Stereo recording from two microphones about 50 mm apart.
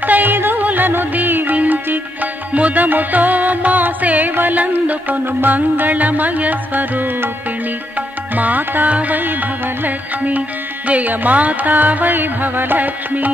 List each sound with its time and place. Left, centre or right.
0.0 s music: right
8.4 s music: right